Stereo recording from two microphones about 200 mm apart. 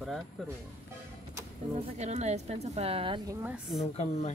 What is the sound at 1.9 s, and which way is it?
A woman's voice, 35° right (ahead or behind).